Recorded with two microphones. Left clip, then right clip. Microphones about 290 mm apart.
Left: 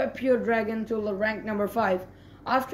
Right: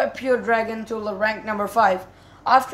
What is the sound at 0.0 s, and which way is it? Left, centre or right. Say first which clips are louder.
Speech: right 4 dB; centre.